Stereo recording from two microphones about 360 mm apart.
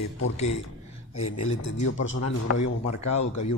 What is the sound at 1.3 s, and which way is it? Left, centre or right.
Speech, centre.